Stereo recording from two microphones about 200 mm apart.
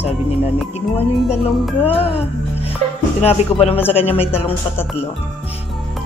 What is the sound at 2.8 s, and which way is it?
Music, 30° right (ahead or behind).